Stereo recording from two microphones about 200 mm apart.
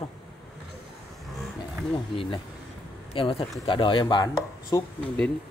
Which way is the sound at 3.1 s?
25° left (ahead or behind).